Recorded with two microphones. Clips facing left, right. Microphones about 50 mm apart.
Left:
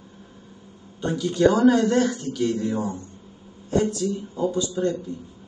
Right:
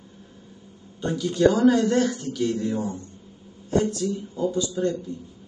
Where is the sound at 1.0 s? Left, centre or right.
Left.